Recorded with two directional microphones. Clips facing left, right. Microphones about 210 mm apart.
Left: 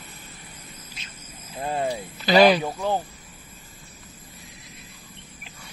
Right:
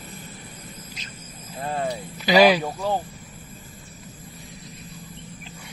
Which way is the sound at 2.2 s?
10° right (ahead or behind).